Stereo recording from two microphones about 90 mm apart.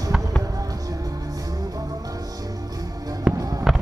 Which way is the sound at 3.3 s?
15° right (ahead or behind).